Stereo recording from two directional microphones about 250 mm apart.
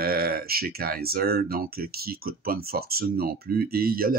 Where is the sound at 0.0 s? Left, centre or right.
Right.